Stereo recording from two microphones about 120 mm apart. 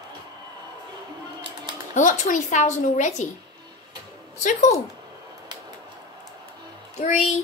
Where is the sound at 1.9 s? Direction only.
90° left.